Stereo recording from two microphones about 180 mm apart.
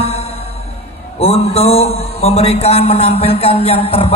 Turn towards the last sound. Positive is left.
turn(degrees=35)  # may be behind; listen again after turning